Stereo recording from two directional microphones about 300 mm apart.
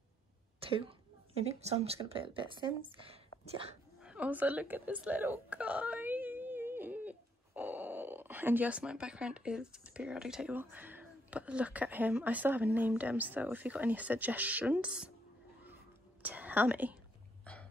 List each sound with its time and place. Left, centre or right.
0.6 s a woman's voice: centre
4.0 s speech: centre
16.2 s a woman's voice: centre
17.5 s throat clearing: centre